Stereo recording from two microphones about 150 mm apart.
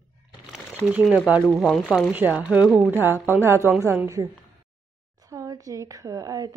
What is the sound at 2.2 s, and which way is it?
A woman's voice, 10° right (ahead or behind).